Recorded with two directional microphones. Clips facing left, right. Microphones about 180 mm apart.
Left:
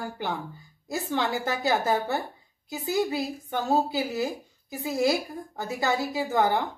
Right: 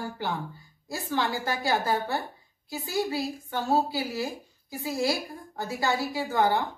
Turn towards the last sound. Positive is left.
turn(degrees=20)  # may be behind; listen again after turning